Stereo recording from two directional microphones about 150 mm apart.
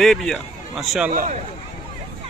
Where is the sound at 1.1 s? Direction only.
65° right (ahead or behind).